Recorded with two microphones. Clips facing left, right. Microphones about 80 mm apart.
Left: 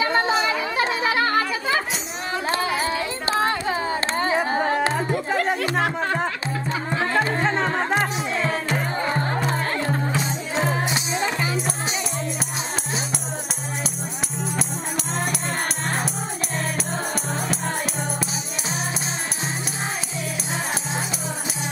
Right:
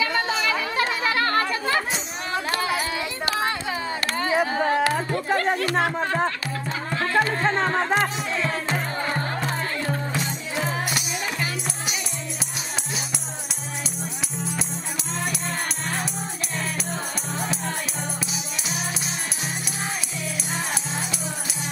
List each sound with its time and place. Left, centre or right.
0.0 s chatter: left; by 1.8 s centre
2.4 s a sound: left
4.9 s a sound: centre
5.8 s music: centre
6.9 s music: left
7.4 s music: centre; by 11.4 s left